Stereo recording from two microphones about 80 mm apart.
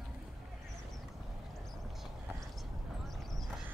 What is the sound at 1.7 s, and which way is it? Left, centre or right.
Clip-clop, centre.